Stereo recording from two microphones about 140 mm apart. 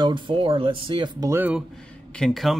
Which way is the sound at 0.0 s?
35° right (ahead or behind).